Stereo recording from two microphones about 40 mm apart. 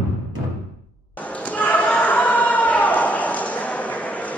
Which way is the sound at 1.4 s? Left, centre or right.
Left.